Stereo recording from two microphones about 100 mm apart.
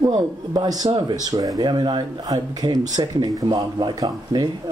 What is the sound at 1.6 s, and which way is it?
Speech, 50° right (ahead or behind).